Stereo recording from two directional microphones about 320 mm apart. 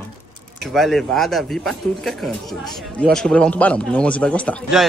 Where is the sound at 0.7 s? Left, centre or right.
Centre.